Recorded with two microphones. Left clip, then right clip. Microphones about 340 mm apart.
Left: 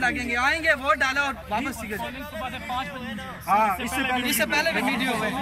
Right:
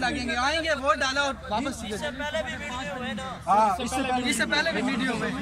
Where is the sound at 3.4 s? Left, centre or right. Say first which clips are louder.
Even; centre.